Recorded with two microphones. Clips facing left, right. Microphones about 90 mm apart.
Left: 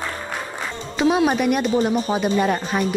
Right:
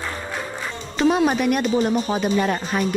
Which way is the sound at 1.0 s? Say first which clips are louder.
Even; 5° left (ahead or behind).